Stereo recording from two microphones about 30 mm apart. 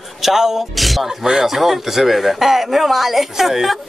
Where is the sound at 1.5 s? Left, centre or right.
Centre.